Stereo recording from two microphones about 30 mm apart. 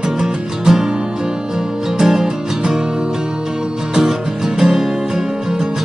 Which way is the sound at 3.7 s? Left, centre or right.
Right.